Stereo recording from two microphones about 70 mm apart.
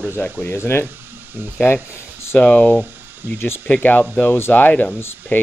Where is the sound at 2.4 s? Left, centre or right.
Left.